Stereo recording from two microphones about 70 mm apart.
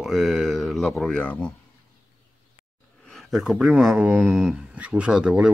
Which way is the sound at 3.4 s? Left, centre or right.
Centre.